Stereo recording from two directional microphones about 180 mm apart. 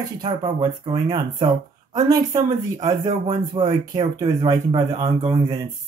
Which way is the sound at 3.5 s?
30° right (ahead or behind).